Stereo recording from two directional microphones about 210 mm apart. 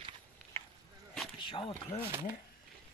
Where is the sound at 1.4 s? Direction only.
25° left (ahead or behind).